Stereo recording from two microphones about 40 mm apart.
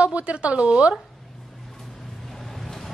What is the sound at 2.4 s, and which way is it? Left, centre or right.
Vehicle, centre.